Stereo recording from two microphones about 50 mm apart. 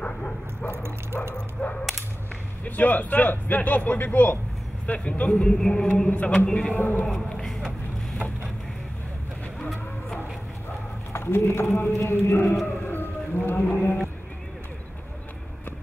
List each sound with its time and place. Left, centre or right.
0.7 s bow-wow: right
1.3 s speech: left
2.6 s a man's voice: left
4.8 s speech: left
6.0 s speech: left
6.7 s a man's voice: left
7.1 s speech: centre
11.1 s speech: left
12.6 s a sound: left